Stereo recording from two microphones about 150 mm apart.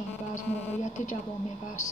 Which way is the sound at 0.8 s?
55° left (ahead or behind).